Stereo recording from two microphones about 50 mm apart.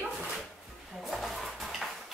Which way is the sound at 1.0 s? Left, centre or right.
Centre.